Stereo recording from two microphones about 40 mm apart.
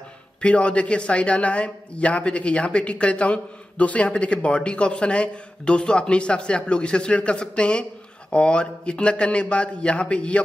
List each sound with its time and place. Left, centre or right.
0.4 s speech: left